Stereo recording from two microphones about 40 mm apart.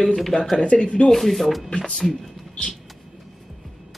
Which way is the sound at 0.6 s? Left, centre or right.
Left.